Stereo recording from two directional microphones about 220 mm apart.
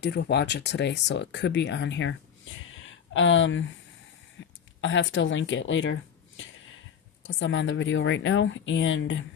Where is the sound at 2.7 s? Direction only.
60° left (ahead or behind).